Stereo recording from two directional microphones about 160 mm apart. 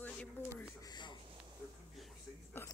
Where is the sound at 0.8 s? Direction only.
25° left (ahead or behind).